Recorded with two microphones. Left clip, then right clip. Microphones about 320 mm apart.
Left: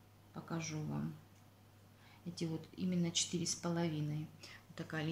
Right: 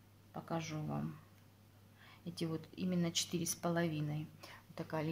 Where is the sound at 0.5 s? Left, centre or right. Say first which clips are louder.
Right 2 dB; right.